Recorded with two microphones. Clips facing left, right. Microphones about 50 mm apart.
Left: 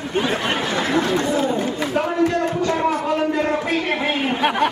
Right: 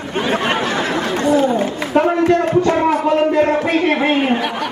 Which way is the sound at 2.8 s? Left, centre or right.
Right.